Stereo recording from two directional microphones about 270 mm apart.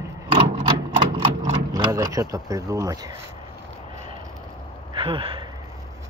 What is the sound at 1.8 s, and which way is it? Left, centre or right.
Speech, centre.